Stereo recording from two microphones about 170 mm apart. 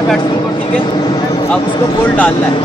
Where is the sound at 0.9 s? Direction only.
25° left (ahead or behind).